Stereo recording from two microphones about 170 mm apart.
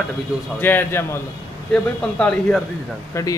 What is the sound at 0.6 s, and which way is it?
A man's voice, 10° left (ahead or behind).